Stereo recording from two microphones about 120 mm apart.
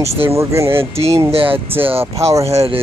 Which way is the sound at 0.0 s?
25° right (ahead or behind).